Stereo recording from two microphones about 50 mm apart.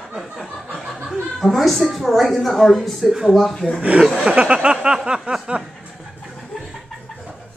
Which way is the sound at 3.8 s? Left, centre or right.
Right.